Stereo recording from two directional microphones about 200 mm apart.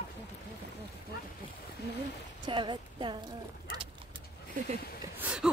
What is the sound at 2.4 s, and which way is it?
Speech, 20° right (ahead or behind).